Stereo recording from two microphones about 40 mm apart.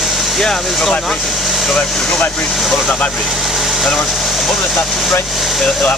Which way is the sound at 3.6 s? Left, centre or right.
Centre.